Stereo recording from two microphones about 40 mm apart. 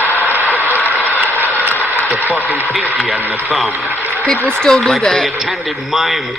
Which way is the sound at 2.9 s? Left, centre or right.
Right.